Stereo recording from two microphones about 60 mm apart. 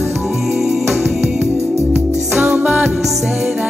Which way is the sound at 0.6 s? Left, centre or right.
Centre.